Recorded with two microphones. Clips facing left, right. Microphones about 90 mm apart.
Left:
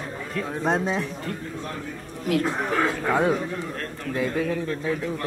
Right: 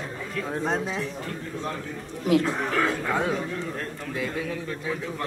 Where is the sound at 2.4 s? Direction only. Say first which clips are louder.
Left 1 dB; 15° left (ahead or behind).